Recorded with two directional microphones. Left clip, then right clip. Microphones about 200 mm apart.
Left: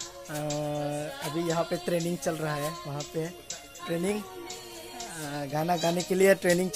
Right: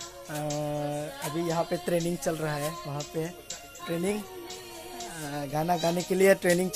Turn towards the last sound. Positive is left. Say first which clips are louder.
# even
turn(degrees=0)  # may be behind; listen again after turning